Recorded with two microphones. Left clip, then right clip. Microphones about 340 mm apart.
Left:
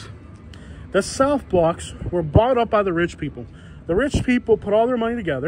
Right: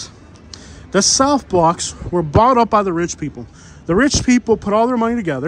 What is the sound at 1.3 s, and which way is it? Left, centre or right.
Speech, right.